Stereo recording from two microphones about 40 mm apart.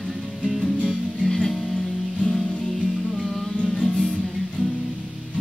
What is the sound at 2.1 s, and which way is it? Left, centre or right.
Music, left.